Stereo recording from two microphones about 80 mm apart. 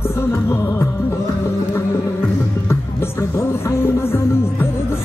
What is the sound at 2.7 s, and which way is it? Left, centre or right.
Speech, left.